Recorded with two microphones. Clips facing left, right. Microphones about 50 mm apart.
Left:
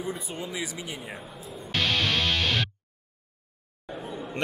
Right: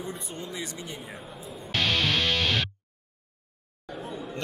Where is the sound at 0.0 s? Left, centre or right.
Centre.